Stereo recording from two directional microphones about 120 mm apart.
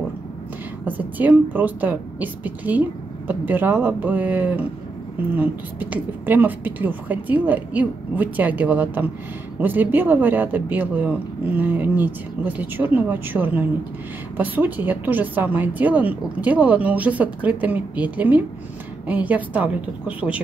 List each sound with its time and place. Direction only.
0.8 s speech: 15° right (ahead or behind)